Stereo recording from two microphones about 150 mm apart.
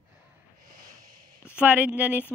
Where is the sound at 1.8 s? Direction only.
10° right (ahead or behind).